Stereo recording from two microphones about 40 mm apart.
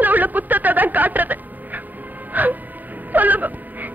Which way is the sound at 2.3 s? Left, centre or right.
Right.